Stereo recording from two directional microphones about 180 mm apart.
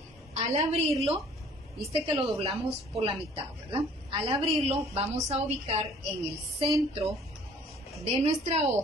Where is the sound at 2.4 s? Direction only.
35° right (ahead or behind).